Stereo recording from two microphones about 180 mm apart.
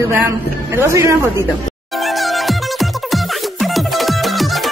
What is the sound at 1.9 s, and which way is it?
Music, centre (ahead or behind).